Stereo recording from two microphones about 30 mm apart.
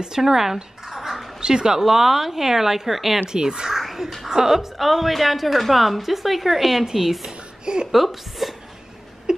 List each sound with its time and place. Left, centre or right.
0.2 s speech: centre
0.8 s a sound: centre
1.4 s speech: right
1.8 s speech: centre
3.3 s speech: right
3.7 s crow: centre
4.3 s speech: centre
4.7 s a woman's voice: centre
7.6 s speech: right
7.9 s a woman's voice: centre
9.3 s a sound: right